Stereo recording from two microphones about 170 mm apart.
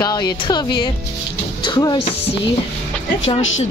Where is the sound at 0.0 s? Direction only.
25° left (ahead or behind).